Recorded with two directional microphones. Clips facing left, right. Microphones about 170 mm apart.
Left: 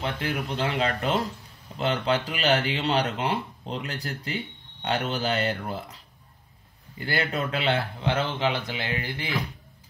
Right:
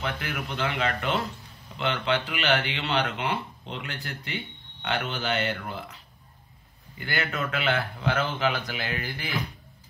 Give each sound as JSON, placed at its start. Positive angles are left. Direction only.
{"t": 0.0, "sound": "speech", "side_deg": 35}
{"t": 7.0, "sound": "speech", "side_deg": 35}